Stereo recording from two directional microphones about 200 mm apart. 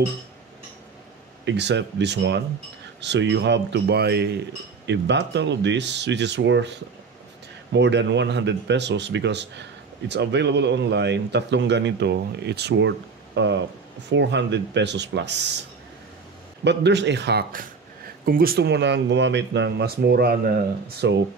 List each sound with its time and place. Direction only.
1.4 s speech: 60° right (ahead or behind)
16.6 s speech: 60° right (ahead or behind)